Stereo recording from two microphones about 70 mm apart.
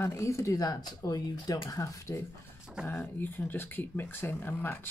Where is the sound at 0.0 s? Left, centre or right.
Left.